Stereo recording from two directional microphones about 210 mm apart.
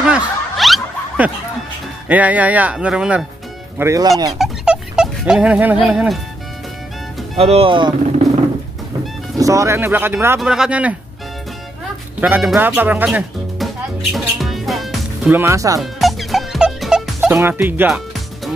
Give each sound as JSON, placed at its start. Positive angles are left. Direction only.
{"t": 0.1, "sound": "a sound", "side_deg": 0}
{"t": 2.0, "sound": "speech", "side_deg": -5}
{"t": 3.7, "sound": "speech", "side_deg": -15}
{"t": 4.4, "sound": "dog", "side_deg": 0}
{"t": 7.3, "sound": "speech", "side_deg": -30}
{"t": 9.4, "sound": "speech", "side_deg": -15}
{"t": 12.2, "sound": "speech", "side_deg": -5}
{"t": 14.1, "sound": "music", "side_deg": 0}
{"t": 15.8, "sound": "music", "side_deg": 0}